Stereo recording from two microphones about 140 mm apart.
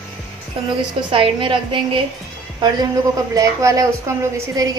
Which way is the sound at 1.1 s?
35° right (ahead or behind).